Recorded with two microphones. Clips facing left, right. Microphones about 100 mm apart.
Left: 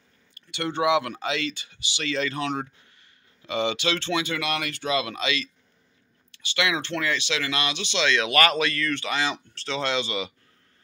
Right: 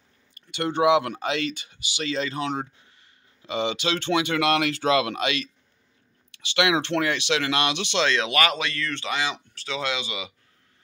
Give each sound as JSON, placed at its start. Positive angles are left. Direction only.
{"t": 0.5, "sound": "speech", "side_deg": -40}
{"t": 4.0, "sound": "speech", "side_deg": -55}
{"t": 6.3, "sound": "speech", "side_deg": -70}
{"t": 8.2, "sound": "speech", "side_deg": -20}
{"t": 9.2, "sound": "speech", "side_deg": -10}